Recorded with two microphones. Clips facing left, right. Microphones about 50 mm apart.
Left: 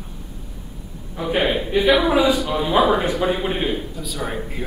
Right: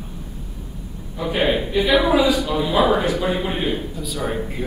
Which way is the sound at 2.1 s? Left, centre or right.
Left.